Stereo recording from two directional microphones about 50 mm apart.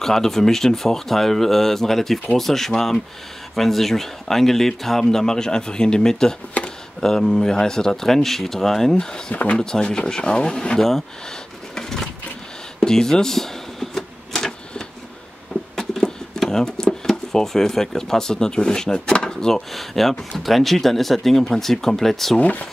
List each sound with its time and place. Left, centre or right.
0.0 s speech: centre
6.6 s a sound: left
7.0 s speech: centre
9.3 s speech: left
9.6 s speech: centre
10.8 s speech: centre
11.7 s a sound: centre
12.8 s typewriter: centre
15.7 s a sound: centre
17.1 s speech: centre
22.4 s speech: left